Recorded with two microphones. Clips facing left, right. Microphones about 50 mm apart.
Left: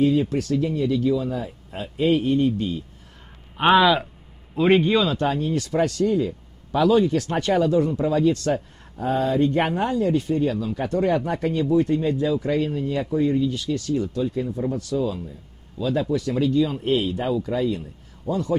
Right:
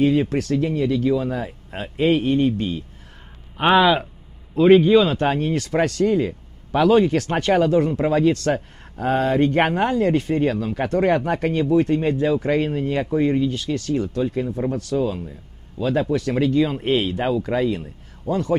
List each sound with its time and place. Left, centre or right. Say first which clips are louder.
0.0 s speech: right 1 dB; right
3.5 s speech: right 1 dB; centre
5.0 s speech: right 2 dB; right